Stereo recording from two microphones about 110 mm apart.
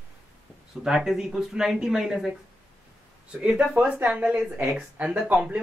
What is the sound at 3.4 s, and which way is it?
Speech, 10° right (ahead or behind).